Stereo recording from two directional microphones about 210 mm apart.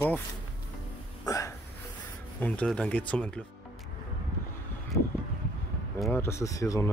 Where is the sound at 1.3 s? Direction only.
15° left (ahead or behind).